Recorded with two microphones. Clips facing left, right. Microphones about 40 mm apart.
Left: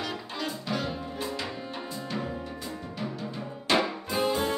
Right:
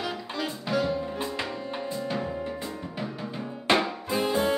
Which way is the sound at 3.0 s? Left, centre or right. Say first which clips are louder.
Right 1 dB; centre.